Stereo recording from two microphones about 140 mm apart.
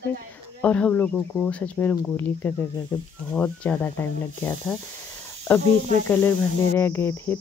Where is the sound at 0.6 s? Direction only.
10° left (ahead or behind).